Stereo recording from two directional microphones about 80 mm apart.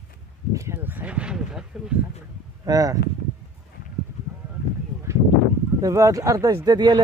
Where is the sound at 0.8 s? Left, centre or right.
Centre.